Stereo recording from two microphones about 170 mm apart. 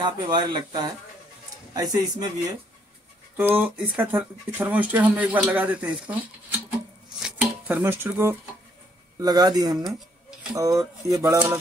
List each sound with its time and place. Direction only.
0.0 s speech: 25° right (ahead or behind)
3.3 s speech: 10° right (ahead or behind)
7.2 s speech: 5° right (ahead or behind); by 9.8 s 25° right (ahead or behind)
9.8 s dishes: centre (ahead or behind)
10.5 s speech: 20° right (ahead or behind)